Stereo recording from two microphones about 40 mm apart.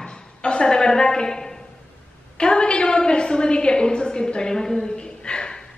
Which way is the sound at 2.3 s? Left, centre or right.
Left.